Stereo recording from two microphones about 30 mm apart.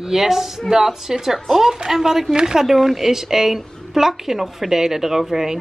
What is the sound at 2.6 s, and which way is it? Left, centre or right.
A woman's voice, centre.